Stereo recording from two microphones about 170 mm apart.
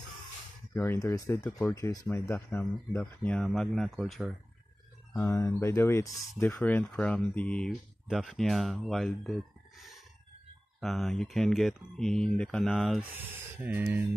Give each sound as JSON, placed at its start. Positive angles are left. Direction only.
{"t": 0.7, "sound": "speech", "side_deg": 15}
{"t": 5.1, "sound": "speech", "side_deg": 15}
{"t": 13.0, "sound": "speech", "side_deg": -10}